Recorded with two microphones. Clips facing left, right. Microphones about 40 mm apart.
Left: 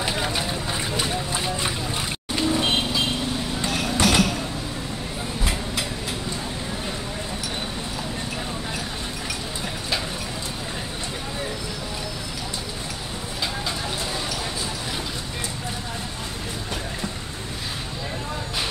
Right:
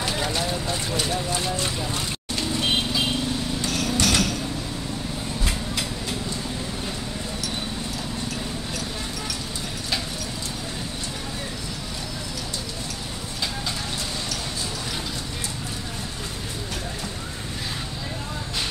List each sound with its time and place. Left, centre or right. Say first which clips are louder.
0.0 s vehicle: even; centre
2.7 s vehicle: left 1 dB; centre
3.6 s a sound: left 3 dB; centre